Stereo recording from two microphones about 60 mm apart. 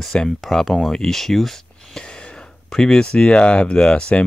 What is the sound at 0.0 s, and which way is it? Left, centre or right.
Speech, centre.